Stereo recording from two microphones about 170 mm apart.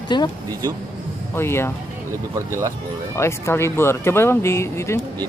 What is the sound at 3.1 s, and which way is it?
Speech, 15° left (ahead or behind).